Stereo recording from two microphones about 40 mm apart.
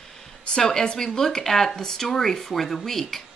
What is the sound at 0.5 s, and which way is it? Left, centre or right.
Speech, centre.